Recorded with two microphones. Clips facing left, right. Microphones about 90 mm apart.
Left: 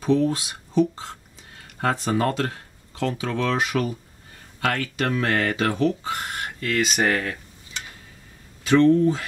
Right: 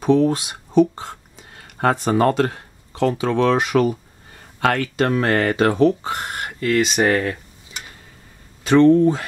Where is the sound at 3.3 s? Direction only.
55° right (ahead or behind).